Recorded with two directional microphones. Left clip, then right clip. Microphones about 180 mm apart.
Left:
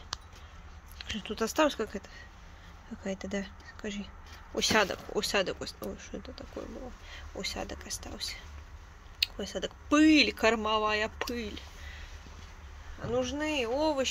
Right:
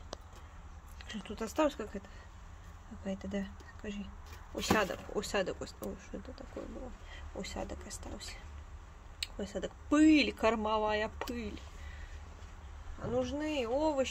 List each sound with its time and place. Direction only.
0.9 s speech: 10° left (ahead or behind)
4.6 s speech: 5° left (ahead or behind)
13.1 s speech: 5° left (ahead or behind)